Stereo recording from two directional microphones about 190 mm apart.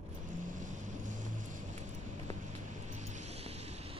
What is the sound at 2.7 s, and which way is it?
Vehicle, 40° right (ahead or behind).